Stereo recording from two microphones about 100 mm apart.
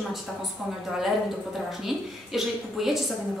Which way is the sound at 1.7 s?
Centre (ahead or behind).